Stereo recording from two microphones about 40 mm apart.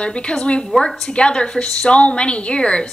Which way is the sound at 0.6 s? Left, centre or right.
Centre.